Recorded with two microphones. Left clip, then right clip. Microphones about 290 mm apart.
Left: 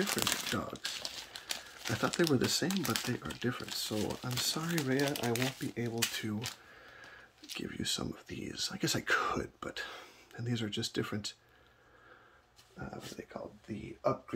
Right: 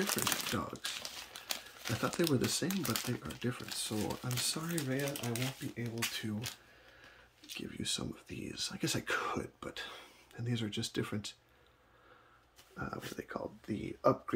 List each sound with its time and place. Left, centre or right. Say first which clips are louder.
0.0 s speech: left 1 dB; centre
4.8 s speech: left 7 dB; centre
7.4 s speech: left 2 dB; centre
12.7 s speech: right 3 dB; centre